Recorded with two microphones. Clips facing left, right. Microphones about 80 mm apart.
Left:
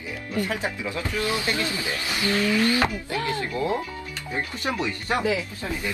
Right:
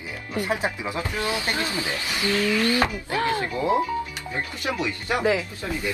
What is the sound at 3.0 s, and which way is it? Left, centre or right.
Speech, right.